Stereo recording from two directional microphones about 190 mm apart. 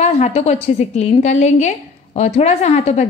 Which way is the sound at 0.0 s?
35° left (ahead or behind).